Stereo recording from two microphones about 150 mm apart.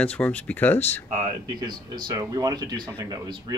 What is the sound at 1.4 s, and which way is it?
Speech, 25° right (ahead or behind).